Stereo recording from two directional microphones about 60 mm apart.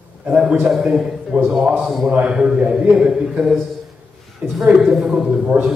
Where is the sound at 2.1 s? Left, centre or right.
Centre.